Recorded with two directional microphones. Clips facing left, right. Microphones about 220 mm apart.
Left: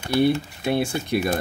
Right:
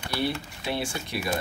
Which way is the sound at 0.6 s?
50° left (ahead or behind).